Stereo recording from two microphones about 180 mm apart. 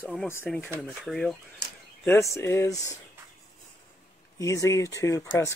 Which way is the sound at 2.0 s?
15° left (ahead or behind).